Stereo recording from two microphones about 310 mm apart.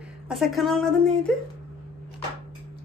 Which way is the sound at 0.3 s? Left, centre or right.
Centre.